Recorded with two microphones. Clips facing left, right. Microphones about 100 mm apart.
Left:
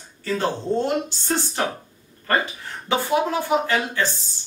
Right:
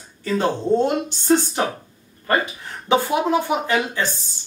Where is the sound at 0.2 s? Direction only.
15° right (ahead or behind).